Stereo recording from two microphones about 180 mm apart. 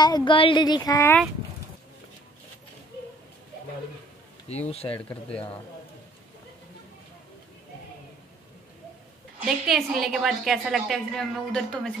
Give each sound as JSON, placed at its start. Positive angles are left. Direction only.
{"t": 0.0, "sound": "speech", "side_deg": 25}
{"t": 0.9, "sound": "speech", "side_deg": 10}
{"t": 4.5, "sound": "speech", "side_deg": 35}
{"t": 9.7, "sound": "a woman's voice", "side_deg": 0}